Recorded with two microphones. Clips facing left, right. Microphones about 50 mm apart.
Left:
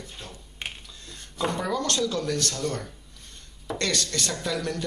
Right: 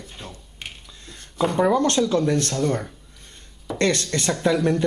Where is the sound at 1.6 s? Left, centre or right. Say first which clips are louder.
Right 8 dB; right.